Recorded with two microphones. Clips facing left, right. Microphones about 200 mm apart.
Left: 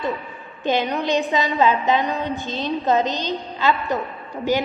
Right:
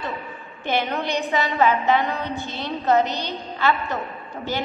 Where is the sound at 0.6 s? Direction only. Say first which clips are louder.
Left 3 dB; 15° left (ahead or behind).